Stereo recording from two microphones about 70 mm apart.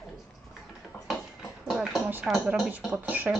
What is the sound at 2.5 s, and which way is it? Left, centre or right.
Speech, centre.